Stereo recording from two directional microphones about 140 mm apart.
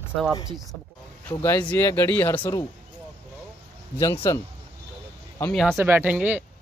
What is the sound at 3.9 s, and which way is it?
Speech, 20° left (ahead or behind).